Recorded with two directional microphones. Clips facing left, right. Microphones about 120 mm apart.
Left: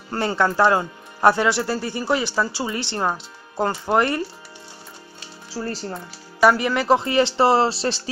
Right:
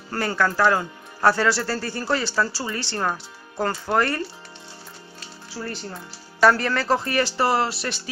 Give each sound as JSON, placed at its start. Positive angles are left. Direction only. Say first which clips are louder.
{"t": 0.1, "sound": "speech", "louder": "left 2 dB", "side_deg": 20}
{"t": 5.5, "sound": "speech", "louder": "left 4 dB", "side_deg": 35}
{"t": 6.4, "sound": "speech", "louder": "left 1 dB", "side_deg": 15}